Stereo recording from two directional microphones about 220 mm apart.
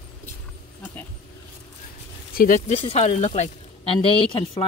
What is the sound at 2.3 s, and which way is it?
Speech, 40° left (ahead or behind).